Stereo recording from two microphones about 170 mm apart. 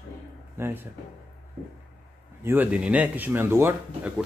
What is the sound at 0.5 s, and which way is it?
Speech, 10° right (ahead or behind).